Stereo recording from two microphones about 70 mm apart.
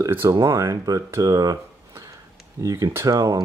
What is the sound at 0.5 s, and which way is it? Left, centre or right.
Speech, right.